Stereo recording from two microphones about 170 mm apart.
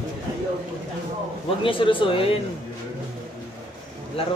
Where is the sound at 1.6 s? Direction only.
30° left (ahead or behind).